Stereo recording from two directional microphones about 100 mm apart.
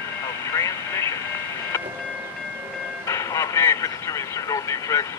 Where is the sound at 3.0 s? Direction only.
30° left (ahead or behind).